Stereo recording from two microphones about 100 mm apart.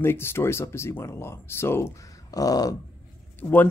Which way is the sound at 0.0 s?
25° left (ahead or behind).